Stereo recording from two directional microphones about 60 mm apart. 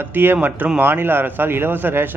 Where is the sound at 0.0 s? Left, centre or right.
Right.